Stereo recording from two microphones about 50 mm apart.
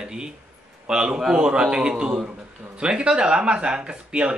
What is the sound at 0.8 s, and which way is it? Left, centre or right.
Speech, centre.